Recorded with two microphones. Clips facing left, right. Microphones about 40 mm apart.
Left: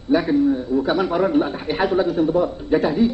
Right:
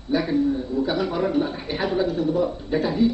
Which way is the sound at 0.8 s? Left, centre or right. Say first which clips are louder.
Left 3 dB; left.